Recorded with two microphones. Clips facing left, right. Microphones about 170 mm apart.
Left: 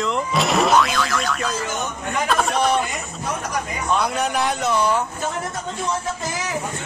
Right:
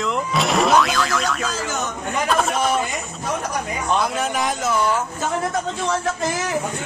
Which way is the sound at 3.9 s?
Centre (ahead or behind).